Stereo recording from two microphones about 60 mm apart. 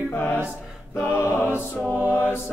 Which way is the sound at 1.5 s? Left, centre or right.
Right.